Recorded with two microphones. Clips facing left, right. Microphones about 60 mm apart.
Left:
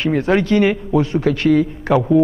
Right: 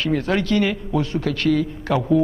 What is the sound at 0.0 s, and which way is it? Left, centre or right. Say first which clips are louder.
Speech: left 5 dB; left.